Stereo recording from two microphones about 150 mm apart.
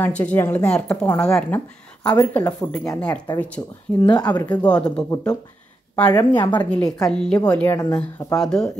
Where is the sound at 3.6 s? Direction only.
25° left (ahead or behind).